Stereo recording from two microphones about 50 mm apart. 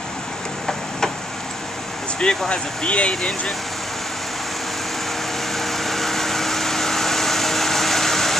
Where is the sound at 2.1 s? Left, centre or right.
Centre.